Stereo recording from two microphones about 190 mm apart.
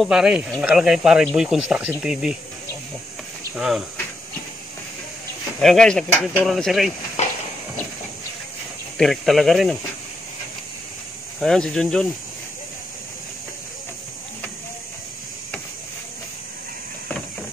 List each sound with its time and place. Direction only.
0.0 s speech: 5° right (ahead or behind)
3.5 s speech: centre (ahead or behind)
5.6 s speech: centre (ahead or behind)
7.2 s walk: 35° left (ahead or behind)
8.9 s speech: centre (ahead or behind)
11.3 s speech: centre (ahead or behind)